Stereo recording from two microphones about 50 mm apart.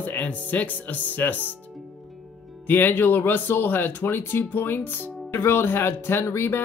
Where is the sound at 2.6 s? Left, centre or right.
Left.